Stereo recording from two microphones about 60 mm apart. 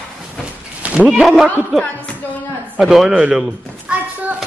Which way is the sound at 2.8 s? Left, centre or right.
Centre.